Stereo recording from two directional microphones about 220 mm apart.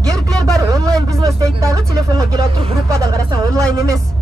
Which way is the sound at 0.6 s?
15° right (ahead or behind).